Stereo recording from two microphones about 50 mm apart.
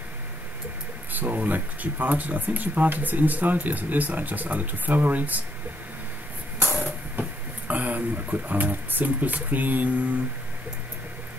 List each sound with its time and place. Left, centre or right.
1.1 s speech: right
7.2 s speech: right